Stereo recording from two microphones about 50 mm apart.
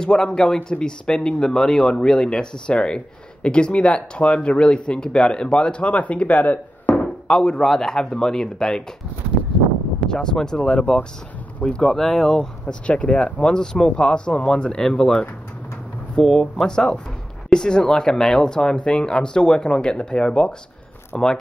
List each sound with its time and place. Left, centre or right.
0.0 s speech: centre; by 6.6 s left
6.9 s speech: centre
10.0 s speech: centre
12.8 s speech: left